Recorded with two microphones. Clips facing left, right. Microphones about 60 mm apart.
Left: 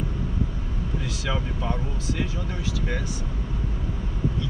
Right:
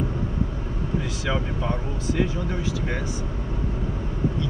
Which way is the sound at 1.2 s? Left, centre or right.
Centre.